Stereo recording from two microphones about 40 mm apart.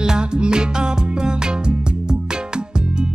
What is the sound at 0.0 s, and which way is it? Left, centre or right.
Music, right.